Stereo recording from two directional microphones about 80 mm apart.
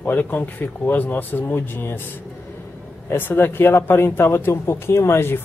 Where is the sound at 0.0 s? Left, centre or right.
Left.